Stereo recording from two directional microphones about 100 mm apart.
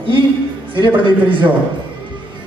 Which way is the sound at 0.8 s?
55° right (ahead or behind).